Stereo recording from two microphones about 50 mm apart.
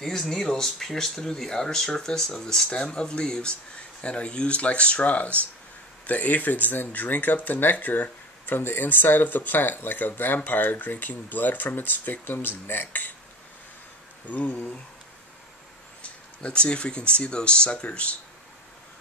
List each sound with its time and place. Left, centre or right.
0.2 s speech: centre; by 13.1 s left
14.2 s speech: left
16.0 s speech: left